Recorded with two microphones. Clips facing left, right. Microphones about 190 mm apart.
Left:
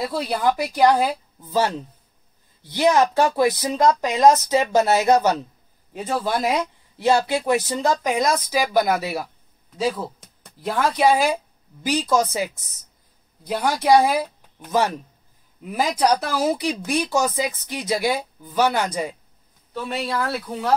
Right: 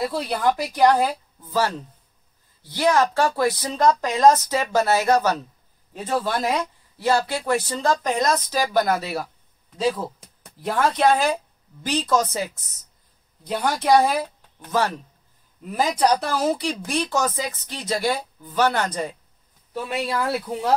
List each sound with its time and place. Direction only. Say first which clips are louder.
0.0 s speech: even; 5° left (ahead or behind)
1.4 s speech: left 2 dB; 20° left (ahead or behind)
4.6 s speech: left 2 dB; 20° left (ahead or behind)
7.0 s speech: left 3 dB; 20° left (ahead or behind)
13.5 s speech: left 1 dB; 5° left (ahead or behind)
19.7 s speech: even; 10° right (ahead or behind)